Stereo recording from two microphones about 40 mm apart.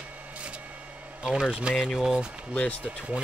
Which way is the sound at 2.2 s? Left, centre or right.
Right.